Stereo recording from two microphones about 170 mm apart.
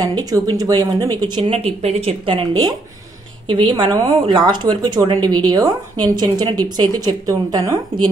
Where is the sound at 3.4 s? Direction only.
30° right (ahead or behind).